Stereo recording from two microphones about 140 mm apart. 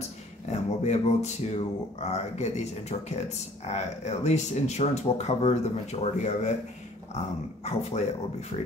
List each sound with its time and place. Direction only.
0.0 s speech: 55° left (ahead or behind)
7.6 s speech: 55° left (ahead or behind)